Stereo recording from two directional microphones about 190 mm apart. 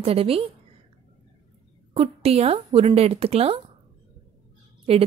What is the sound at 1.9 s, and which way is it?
A woman's voice, 30° right (ahead or behind).